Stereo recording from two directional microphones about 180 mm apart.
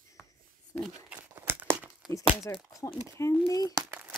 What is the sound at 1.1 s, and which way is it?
Crumpling, 10° right (ahead or behind).